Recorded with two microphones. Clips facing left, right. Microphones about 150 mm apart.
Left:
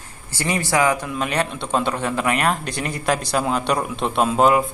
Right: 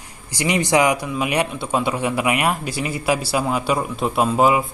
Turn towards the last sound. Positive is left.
turn(degrees=-5)  # may be behind; listen again after turning